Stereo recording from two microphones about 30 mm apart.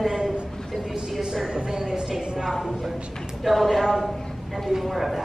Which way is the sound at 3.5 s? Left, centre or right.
Centre.